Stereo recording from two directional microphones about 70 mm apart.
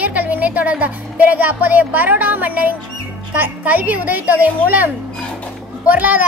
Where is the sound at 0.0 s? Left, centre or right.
Right.